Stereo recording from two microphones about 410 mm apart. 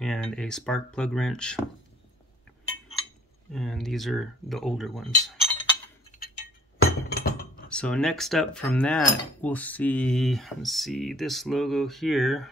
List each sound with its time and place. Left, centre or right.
0.0 s speech: centre
3.5 s speech: centre
6.8 s glass: left
7.7 s speech: centre